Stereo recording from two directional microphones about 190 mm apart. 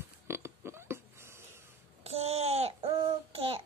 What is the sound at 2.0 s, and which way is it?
Child singing, 30° right (ahead or behind).